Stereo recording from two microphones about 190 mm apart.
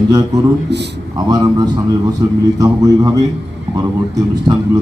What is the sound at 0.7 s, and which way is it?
Speech, 60° right (ahead or behind).